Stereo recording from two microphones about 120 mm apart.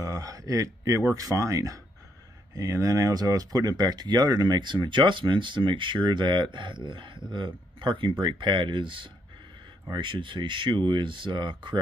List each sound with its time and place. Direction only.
0.0 s speech: 30° right (ahead or behind)